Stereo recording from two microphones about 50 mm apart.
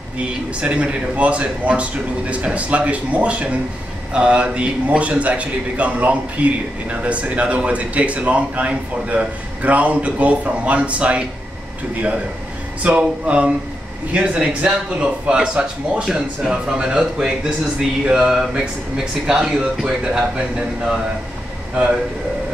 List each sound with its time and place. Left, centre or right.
0.6 s a man's voice: right
12.8 s a man's voice: right
17.7 s speech: centre; by 20.6 s right